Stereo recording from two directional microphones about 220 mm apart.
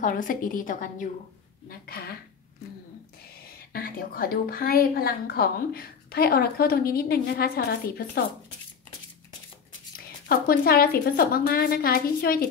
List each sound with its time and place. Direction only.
0.0 s a woman's voice: 40° left (ahead or behind)
3.5 s a woman's voice: 40° left (ahead or behind)
9.9 s a woman's voice: 45° left (ahead or behind)